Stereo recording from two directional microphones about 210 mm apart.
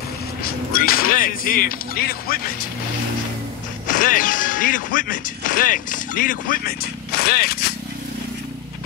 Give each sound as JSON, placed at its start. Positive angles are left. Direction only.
{"t": 0.4, "sound": "speech", "side_deg": 45}
{"t": 3.8, "sound": "speech", "side_deg": 40}